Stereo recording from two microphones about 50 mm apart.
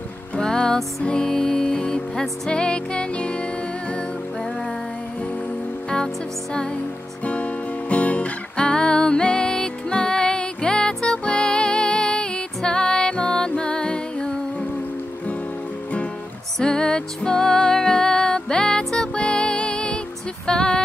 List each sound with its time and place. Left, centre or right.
0.4 s music: centre
7.2 s music: left
16.5 s music: centre